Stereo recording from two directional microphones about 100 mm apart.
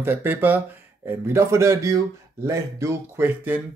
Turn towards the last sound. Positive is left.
turn(degrees=-20)  # may be behind; listen again after turning